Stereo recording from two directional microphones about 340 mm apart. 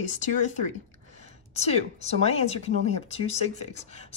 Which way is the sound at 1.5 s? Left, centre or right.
Centre.